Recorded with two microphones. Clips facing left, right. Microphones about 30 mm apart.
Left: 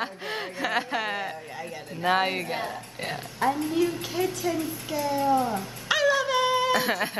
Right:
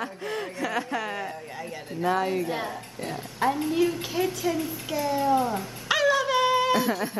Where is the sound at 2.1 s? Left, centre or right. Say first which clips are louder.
Left 1 dB; left.